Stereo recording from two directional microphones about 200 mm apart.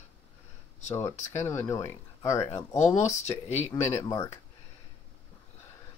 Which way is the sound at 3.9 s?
15° left (ahead or behind).